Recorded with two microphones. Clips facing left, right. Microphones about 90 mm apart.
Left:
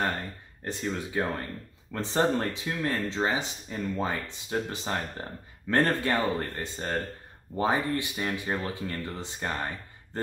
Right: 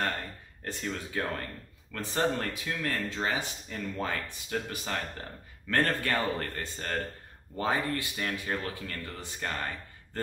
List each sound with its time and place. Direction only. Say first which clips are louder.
0.7 s speech: left 4 dB; 20° left (ahead or behind)